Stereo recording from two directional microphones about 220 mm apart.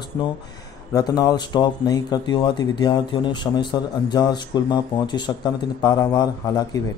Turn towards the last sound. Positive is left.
turn(degrees=15)  # may be behind; listen again after turning